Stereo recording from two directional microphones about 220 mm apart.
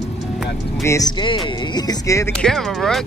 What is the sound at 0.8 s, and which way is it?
Speech, 15° left (ahead or behind).